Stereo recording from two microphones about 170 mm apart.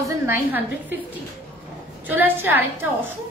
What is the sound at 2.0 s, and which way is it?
Speech, 10° right (ahead or behind).